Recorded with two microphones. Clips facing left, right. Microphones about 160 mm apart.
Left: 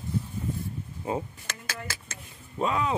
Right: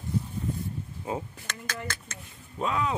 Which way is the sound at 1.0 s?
Centre (ahead or behind).